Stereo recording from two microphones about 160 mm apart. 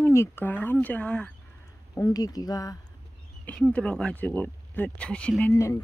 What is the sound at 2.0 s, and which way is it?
Speech, 25° left (ahead or behind).